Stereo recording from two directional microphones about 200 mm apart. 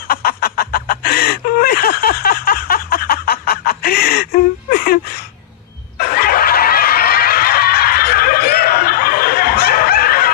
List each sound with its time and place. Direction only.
0.1 s chicken: 50° left (ahead or behind)
5.9 s snicker: 50° left (ahead or behind)